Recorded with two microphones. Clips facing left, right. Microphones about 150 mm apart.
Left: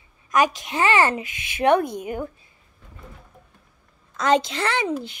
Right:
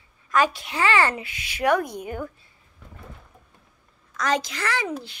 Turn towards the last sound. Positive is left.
turn(degrees=20)  # may be behind; listen again after turning